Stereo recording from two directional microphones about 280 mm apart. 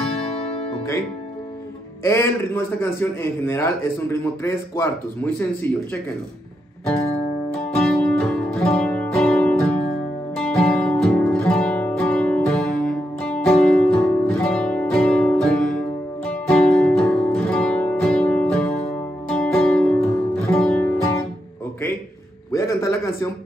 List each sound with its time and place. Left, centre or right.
0.3 s music: left
2.0 s a man's voice: centre
6.9 s music: left
7.8 s music: centre
9.6 s music: left
10.3 s music: centre
16.3 s guitar: centre
19.2 s music: centre
22.5 s a sound: centre